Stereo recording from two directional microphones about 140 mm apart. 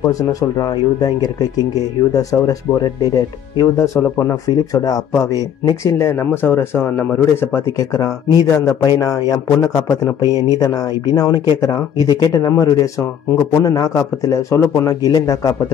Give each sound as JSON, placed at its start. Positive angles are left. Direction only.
{"t": 0.1, "sound": "speech", "side_deg": 25}
{"t": 10.2, "sound": "speech", "side_deg": -25}
{"t": 11.1, "sound": "speech", "side_deg": 25}